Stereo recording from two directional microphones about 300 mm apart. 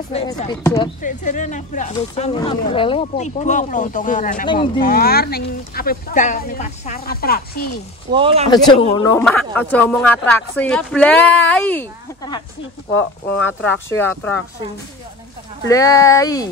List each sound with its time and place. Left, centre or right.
0.1 s speech: centre
8.1 s speech: centre
8.6 s speech: centre
13.6 s speech: centre
15.7 s speech: centre